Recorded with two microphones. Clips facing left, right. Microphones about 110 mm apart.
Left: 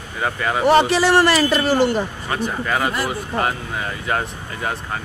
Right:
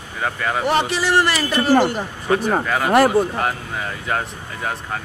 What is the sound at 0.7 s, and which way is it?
Speech, 85° left.